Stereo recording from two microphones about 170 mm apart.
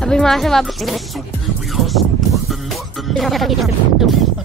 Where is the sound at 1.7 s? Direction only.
Centre (ahead or behind).